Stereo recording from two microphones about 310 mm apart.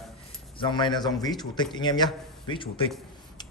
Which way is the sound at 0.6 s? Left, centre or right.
Centre.